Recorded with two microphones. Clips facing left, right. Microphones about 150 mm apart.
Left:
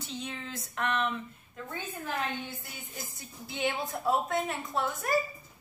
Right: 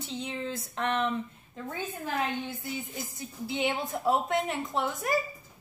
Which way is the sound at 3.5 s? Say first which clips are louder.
Right 2 dB; 20° right (ahead or behind).